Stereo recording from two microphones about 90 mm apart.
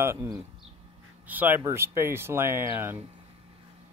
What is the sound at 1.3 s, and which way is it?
Speech, 20° right (ahead or behind).